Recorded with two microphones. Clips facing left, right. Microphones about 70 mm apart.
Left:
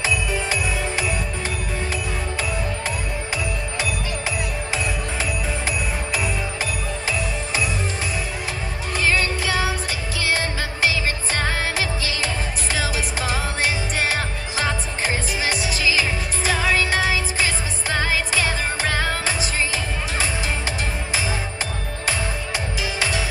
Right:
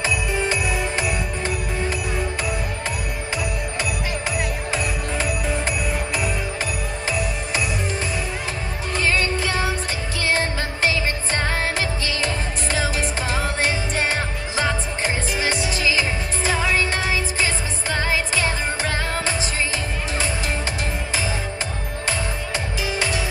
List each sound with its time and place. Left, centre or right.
9.4 s music: right
15.4 s music: right
17.9 s music: right